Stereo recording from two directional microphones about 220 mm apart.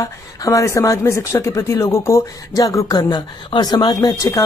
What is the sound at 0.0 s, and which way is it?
Speech, 15° left (ahead or behind).